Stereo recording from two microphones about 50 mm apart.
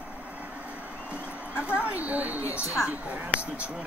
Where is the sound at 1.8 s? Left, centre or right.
Right.